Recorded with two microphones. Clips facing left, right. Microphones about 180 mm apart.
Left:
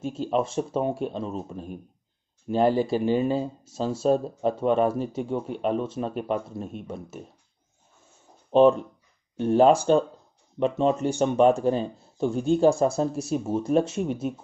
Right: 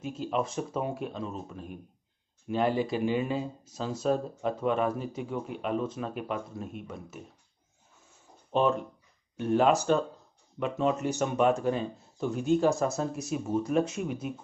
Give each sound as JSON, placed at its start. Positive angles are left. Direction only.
{"t": 0.0, "sound": "speech", "side_deg": 30}
{"t": 8.5, "sound": "speech", "side_deg": 30}